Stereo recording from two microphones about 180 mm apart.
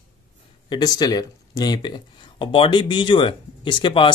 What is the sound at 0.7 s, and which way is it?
Speech, 20° left (ahead or behind).